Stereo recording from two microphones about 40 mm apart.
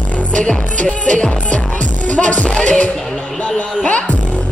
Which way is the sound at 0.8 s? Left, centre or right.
Left.